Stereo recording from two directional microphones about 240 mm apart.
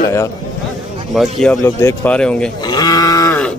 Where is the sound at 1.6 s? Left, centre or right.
Centre.